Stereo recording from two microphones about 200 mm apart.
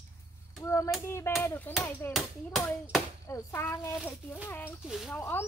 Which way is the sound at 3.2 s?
15° left (ahead or behind).